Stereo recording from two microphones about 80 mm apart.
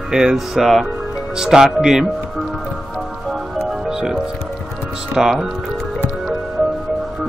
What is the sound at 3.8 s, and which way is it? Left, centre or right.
Music, centre.